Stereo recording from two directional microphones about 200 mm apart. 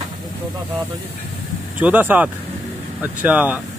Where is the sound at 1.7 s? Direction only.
10° right (ahead or behind).